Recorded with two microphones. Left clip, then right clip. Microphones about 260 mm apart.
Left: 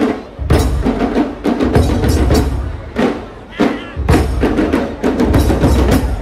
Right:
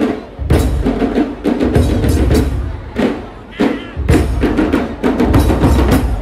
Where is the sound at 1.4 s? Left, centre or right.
Left.